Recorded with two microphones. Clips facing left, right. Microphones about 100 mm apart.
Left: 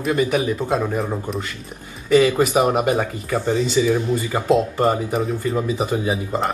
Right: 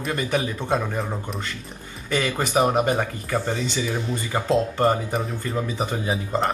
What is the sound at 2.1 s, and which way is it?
Speech, 15° left (ahead or behind).